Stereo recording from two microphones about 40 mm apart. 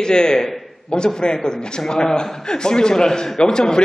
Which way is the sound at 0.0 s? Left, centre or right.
Centre.